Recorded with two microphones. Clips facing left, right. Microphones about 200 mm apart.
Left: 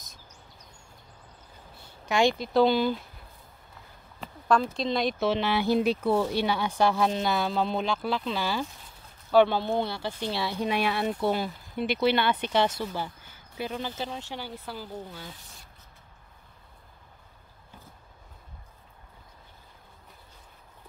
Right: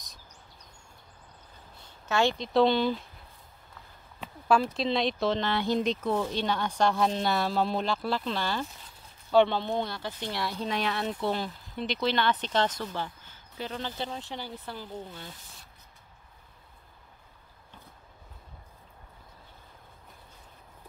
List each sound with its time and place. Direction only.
1.9 s speech: 15° left (ahead or behind)
4.2 s a sound: 5° right (ahead or behind)
4.7 s speech: centre (ahead or behind)